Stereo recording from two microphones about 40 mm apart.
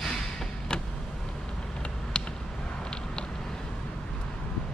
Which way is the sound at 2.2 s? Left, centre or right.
Left.